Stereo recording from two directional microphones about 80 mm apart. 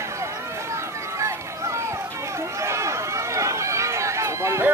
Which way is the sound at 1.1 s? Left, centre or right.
Right.